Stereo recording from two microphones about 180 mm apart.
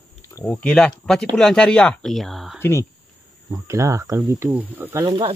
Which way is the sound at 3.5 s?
15° right (ahead or behind).